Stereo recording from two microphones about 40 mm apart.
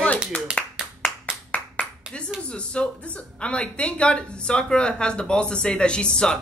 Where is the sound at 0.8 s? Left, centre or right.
Centre.